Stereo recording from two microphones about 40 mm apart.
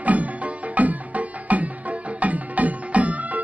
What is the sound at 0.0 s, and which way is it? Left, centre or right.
Music, right.